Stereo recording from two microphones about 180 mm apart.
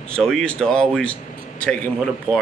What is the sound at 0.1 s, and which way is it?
Speech, 5° left (ahead or behind).